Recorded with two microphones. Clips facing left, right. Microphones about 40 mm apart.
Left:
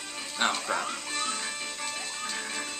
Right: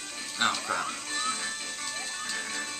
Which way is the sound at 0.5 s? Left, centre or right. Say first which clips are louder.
Left 1 dB; left.